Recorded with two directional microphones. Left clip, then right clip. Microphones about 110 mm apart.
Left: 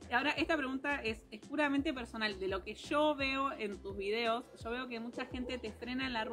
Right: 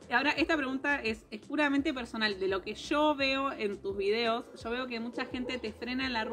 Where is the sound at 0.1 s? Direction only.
35° left (ahead or behind).